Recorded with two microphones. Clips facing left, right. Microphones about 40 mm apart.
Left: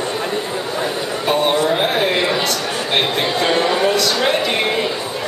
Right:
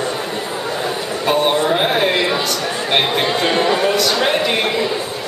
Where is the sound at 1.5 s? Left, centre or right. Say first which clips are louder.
Right 1 dB; centre.